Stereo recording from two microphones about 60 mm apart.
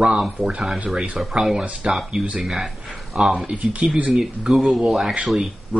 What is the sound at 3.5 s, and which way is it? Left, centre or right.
Speech, right.